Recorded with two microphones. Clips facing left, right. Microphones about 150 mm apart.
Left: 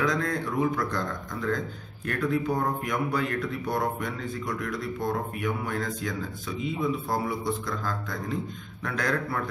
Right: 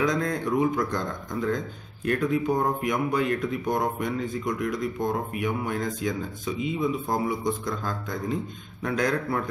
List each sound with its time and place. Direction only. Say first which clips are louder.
0.0 s speech: right 2 dB; 20° right (ahead or behind)